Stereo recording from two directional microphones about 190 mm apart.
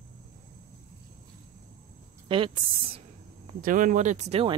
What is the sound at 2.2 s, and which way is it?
Speech, 25° right (ahead or behind).